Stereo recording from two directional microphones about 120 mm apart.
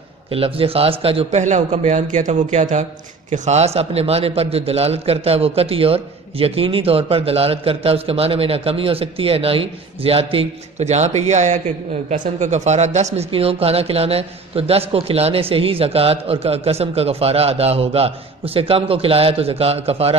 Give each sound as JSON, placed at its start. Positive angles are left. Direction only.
{"t": 0.3, "sound": "a man's voice", "side_deg": -50}
{"t": 1.4, "sound": "a man's voice", "side_deg": -85}